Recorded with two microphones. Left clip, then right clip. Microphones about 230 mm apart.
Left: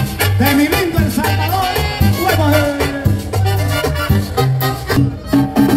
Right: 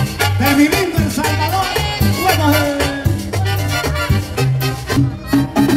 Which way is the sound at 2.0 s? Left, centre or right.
Right.